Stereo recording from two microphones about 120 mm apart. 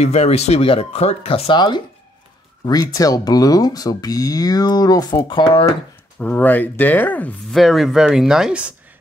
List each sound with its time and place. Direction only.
0.0 s speech: 65° left (ahead or behind)
2.6 s speech: 35° left (ahead or behind)
5.4 s speech: 45° left (ahead or behind)
6.1 s speech: 15° left (ahead or behind)
7.5 s speech: centre (ahead or behind)